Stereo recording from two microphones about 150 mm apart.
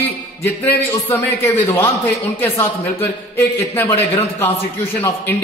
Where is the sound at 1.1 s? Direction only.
15° left (ahead or behind).